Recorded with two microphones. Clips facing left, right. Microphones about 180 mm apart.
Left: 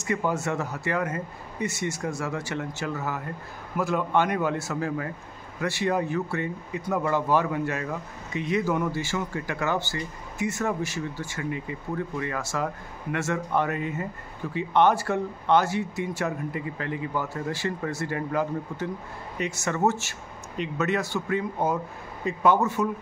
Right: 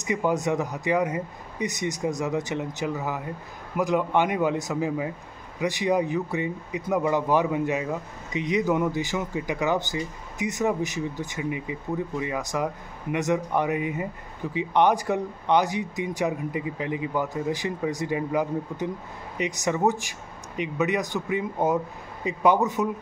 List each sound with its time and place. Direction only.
0.0 s speech: 15° right (ahead or behind)